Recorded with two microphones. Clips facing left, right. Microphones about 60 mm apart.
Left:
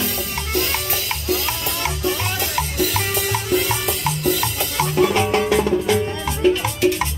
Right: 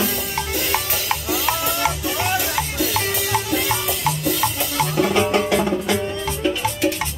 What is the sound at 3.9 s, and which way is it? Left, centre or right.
Music, centre.